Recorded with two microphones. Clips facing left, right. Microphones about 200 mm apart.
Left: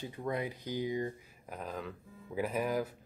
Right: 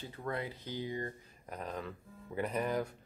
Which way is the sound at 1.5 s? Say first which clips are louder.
Even; centre (ahead or behind).